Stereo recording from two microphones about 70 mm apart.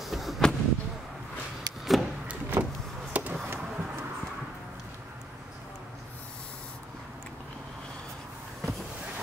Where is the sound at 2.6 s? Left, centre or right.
Right.